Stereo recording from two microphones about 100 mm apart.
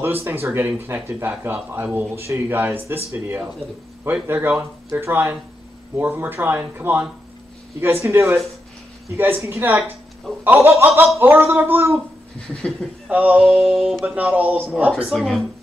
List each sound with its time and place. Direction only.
0.0 s speech: 20° right (ahead or behind)
4.0 s speech: 20° right (ahead or behind)
13.1 s music: 10° right (ahead or behind)
14.1 s music: 15° right (ahead or behind)
15.0 s speech: centre (ahead or behind)